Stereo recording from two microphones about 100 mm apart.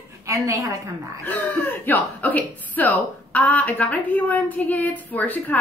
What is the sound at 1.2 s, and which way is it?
A woman's voice, 20° left (ahead or behind).